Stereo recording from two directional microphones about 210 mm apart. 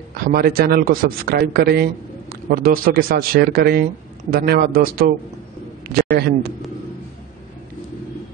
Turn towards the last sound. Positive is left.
turn(degrees=-45)  # may be behind; listen again after turning